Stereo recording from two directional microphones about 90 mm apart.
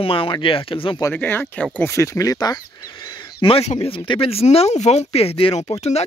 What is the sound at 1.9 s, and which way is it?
Speech, 35° left (ahead or behind).